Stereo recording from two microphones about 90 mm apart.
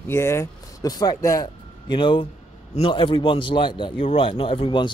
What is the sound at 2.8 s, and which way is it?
Speech, 75° left (ahead or behind).